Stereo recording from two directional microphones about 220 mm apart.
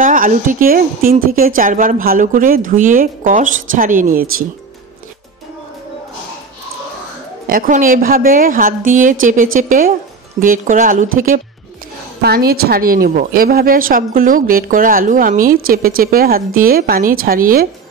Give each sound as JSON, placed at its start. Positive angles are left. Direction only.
{"t": 0.0, "sound": "a woman's voice", "side_deg": -35}
{"t": 7.4, "sound": "a woman's voice", "side_deg": -40}